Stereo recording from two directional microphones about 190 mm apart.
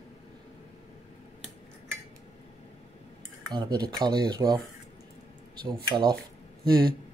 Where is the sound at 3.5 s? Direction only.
20° right (ahead or behind).